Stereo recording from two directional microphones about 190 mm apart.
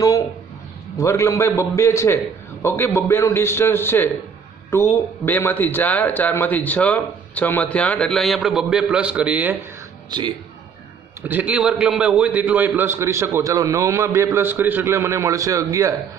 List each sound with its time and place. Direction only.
0.9 s speech: 15° left (ahead or behind); by 9.6 s 10° right (ahead or behind)
10.0 s speech: 25° right (ahead or behind)
11.2 s a man's voice: 10° right (ahead or behind)